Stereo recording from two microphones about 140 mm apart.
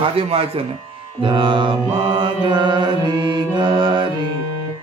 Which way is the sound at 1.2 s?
35° right (ahead or behind).